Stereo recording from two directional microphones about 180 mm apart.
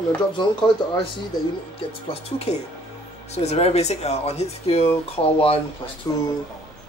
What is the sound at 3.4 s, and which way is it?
Speech, 35° left (ahead or behind).